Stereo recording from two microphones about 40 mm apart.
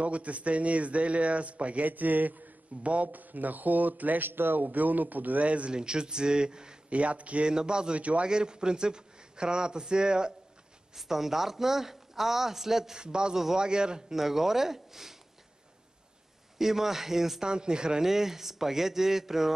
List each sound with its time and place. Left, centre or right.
0.0 s a man's voice: right
4.3 s speech: right
4.6 s speech: right
5.7 s a man's voice: right
6.9 s a man's voice: right
7.4 s a man's voice: right
8.0 s a man's voice: right
8.3 s a man's voice: right
11.0 s speech: centre
13.0 s a man's voice: right
14.1 s speech: centre
16.5 s speech: centre
17.5 s a man's voice: right
18.0 s speech: centre